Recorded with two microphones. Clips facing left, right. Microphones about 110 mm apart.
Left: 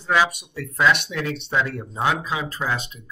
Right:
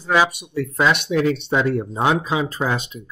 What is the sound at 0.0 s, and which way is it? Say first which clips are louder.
Speech: right 2 dB; 10° right (ahead or behind).